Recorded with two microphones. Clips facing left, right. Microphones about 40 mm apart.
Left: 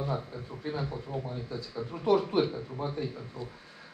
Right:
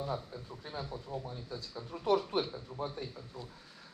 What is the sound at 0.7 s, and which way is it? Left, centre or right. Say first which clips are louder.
A man's voice: left 7 dB; left.